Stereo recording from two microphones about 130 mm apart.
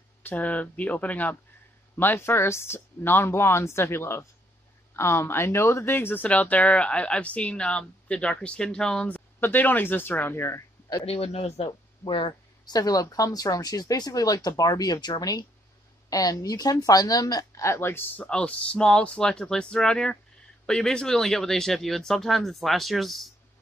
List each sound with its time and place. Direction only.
0.2 s speech: 15° left (ahead or behind)
11.1 s speech: 50° left (ahead or behind); by 23.3 s centre (ahead or behind)